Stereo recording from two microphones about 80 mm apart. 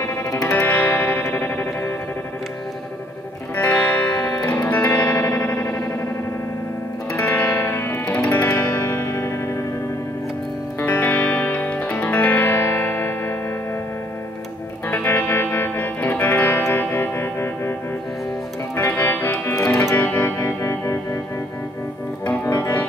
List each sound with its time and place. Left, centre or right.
0.0 s music: left
0.7 s music: left
3.5 s music: left
7.2 s music: left
10.8 s music: left
14.9 s music: left
18.8 s music: left
19.4 s music: left
22.2 s music: left